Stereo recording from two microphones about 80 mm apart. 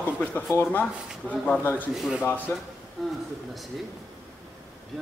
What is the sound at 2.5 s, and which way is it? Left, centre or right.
Speech, left.